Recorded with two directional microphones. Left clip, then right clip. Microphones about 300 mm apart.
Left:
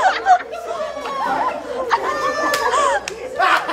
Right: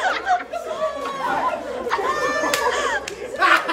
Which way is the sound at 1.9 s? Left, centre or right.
Left.